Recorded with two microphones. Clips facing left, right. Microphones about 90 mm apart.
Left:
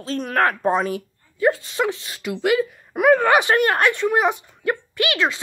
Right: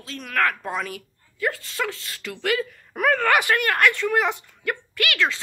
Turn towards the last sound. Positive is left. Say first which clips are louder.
# left 3 dB
turn(degrees=20)  # may be behind; listen again after turning